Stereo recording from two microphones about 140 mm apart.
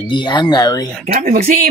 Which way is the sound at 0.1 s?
35° left (ahead or behind).